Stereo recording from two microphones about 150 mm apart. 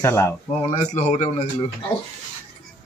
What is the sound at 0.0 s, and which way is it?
Speech, 20° left (ahead or behind).